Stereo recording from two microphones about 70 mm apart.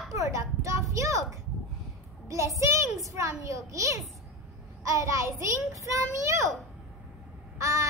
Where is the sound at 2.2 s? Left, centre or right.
Right.